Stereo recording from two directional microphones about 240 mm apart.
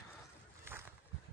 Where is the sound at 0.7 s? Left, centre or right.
Centre.